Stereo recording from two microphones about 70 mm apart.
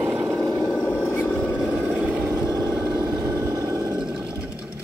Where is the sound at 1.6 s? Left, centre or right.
Centre.